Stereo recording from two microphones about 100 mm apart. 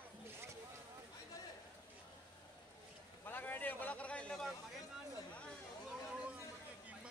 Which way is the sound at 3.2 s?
20° left (ahead or behind).